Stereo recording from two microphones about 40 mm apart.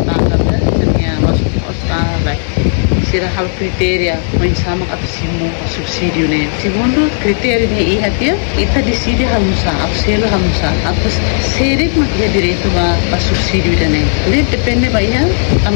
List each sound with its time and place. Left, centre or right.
0.1 s a sound: centre
3.1 s speech: centre
6.0 s speech: centre